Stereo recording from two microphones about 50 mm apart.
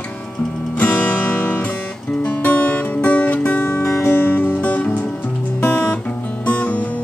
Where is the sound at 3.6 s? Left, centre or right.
Left.